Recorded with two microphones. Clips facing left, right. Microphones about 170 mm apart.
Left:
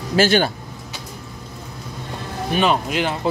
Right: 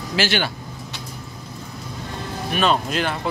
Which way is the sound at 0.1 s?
45° left (ahead or behind).